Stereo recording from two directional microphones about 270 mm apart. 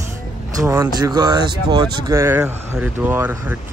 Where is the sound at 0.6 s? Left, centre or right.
Centre.